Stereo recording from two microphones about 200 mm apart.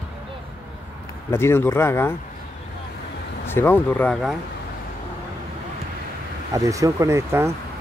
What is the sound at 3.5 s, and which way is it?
Speech, 10° left (ahead or behind).